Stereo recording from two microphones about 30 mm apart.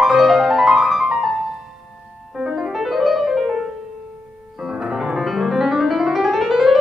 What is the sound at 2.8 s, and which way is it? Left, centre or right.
Piano, centre.